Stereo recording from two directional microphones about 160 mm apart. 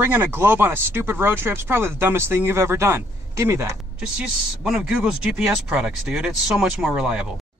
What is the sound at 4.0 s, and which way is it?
Speech, 5° right (ahead or behind).